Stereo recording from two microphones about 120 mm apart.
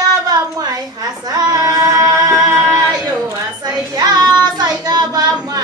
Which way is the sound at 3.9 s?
30° right (ahead or behind).